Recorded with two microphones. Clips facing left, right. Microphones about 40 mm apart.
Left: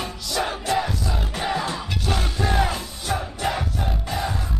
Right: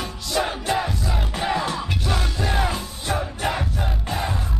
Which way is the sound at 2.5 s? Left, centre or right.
Right.